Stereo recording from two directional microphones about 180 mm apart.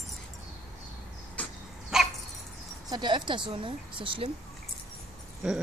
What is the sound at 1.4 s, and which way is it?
Dog, 5° left (ahead or behind).